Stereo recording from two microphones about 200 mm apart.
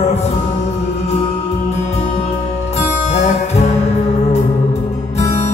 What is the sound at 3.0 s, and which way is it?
Music, 35° left (ahead or behind).